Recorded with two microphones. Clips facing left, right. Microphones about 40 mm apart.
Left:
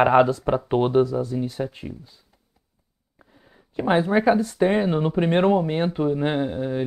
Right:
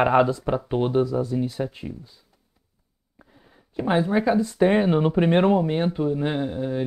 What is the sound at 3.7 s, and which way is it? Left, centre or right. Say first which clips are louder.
Speech: left 2 dB; centre.